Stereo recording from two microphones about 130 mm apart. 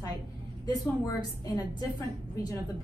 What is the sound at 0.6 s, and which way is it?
A woman's voice, 30° left (ahead or behind).